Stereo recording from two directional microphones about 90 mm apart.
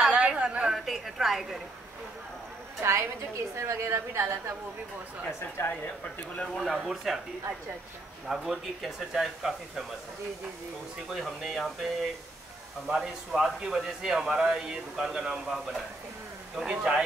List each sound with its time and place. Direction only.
0.0 s a sound: 10° right (ahead or behind)
0.7 s speech: centre (ahead or behind)
2.8 s a woman's voice: 35° right (ahead or behind)
5.6 s speech: 25° left (ahead or behind)
6.5 s speech: centre (ahead or behind)
8.3 s speech: 5° right (ahead or behind)
11.1 s a man's voice: centre (ahead or behind)